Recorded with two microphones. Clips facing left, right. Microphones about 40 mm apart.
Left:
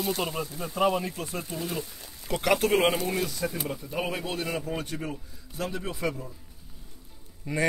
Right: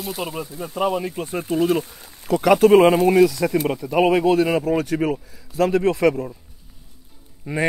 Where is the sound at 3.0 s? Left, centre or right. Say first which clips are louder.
Right 14 dB; right.